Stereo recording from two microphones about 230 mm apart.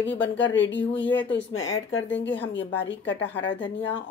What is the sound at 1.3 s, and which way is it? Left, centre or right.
Speech, left.